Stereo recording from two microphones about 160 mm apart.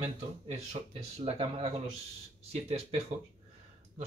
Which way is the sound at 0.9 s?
35° right (ahead or behind).